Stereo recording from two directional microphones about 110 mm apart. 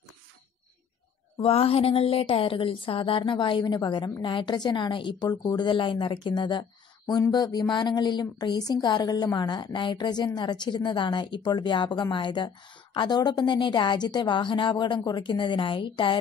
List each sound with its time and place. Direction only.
1.4 s a woman's voice: 60° left (ahead or behind)